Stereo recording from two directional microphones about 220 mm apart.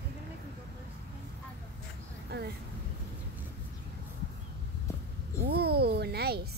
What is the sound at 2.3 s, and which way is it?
Speech, 45° right (ahead or behind).